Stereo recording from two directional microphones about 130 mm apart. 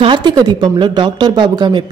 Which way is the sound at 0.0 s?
35° right (ahead or behind).